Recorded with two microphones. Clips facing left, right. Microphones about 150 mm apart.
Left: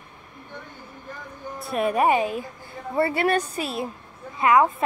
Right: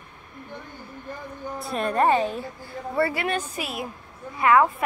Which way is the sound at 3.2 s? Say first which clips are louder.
Left 5 dB; 35° left (ahead or behind).